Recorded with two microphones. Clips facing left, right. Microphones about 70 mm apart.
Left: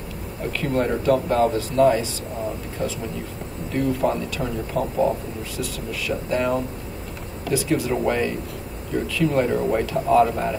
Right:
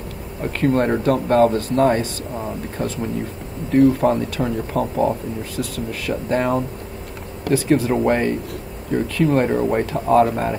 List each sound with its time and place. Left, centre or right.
0.5 s speech: right
2.8 s speech: right
3.7 s speech: right
9.0 s speech: right
9.7 s speech: right
10.1 s speech: right